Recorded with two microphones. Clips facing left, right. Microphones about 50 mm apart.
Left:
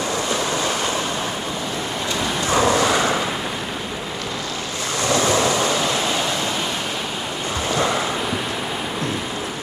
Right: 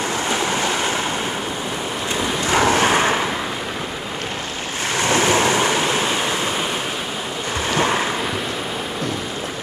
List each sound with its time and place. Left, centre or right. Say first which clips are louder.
0.3 s waves: right 3 dB; right
2.5 s vehicle: right 1 dB; right
5.0 s waves: right 1 dB; right